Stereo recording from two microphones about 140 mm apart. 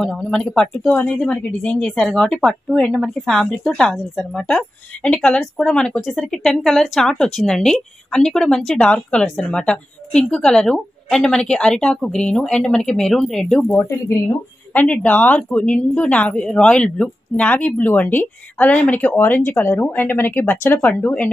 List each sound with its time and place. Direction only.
0.0 s speech: 5° left (ahead or behind)
13.7 s a woman's voice: 15° left (ahead or behind)